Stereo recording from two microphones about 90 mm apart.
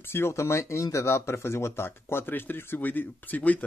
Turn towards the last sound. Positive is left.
turn(degrees=15)  # may be behind; listen again after turning